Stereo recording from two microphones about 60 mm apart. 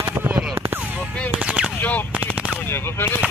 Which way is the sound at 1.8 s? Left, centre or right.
Left.